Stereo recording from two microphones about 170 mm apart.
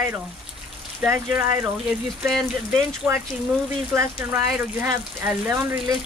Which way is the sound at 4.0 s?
15° right (ahead or behind).